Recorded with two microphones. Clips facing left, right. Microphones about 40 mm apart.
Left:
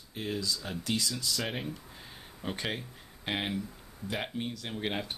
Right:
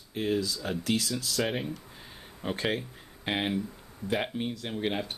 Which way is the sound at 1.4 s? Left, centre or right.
Centre.